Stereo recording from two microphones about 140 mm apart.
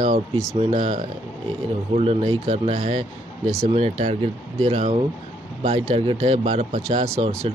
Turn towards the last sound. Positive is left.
turn(degrees=-50)  # may be behind; listen again after turning